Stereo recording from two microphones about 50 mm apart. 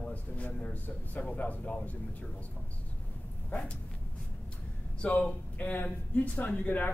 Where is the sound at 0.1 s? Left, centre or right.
Left.